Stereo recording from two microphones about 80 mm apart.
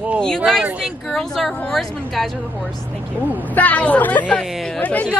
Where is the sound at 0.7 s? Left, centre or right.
Centre.